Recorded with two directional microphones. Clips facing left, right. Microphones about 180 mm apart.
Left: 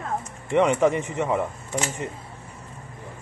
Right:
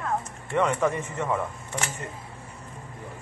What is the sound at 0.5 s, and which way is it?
Speech, 20° left (ahead or behind).